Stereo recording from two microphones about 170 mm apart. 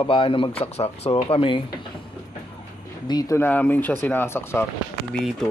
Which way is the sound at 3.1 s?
20° left (ahead or behind).